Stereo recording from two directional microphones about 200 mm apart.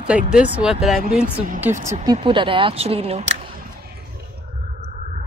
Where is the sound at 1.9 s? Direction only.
20° right (ahead or behind).